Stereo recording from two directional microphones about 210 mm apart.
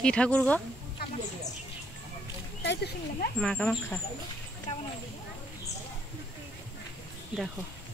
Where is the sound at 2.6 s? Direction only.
55° left (ahead or behind).